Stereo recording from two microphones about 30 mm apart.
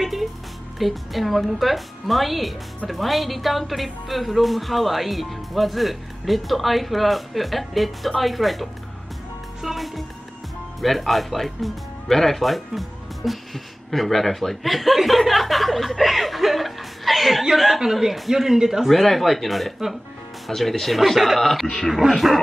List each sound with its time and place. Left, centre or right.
0.0 s a woman's voice: centre
9.6 s speech: centre
10.8 s a woman's voice: centre
18.9 s a woman's voice: centre